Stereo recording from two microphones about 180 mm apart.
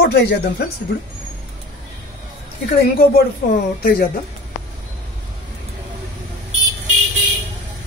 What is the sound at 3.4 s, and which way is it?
Speech, 50° left (ahead or behind).